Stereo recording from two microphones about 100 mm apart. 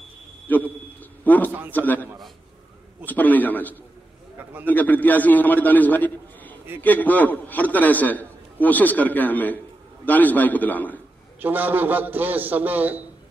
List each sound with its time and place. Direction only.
0.5 s a sound: 15° left (ahead or behind)
1.2 s a man's voice: 15° left (ahead or behind)
3.1 s a man's voice: 15° left (ahead or behind)
11.4 s a man's voice: 20° right (ahead or behind)